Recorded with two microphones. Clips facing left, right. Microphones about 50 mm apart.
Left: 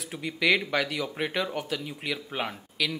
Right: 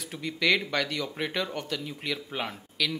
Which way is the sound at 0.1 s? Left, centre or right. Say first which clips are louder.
Left 1 dB; centre.